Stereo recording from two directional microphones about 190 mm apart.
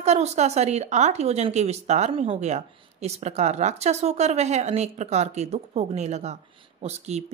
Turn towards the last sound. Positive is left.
turn(degrees=-35)  # may be behind; listen again after turning